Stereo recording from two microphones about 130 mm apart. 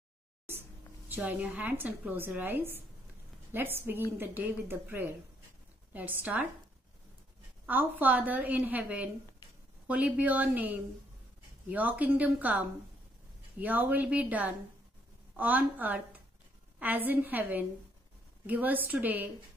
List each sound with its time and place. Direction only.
0.5 s a woman's voice: 15° right (ahead or behind)
7.6 s a woman's voice: 15° right (ahead or behind)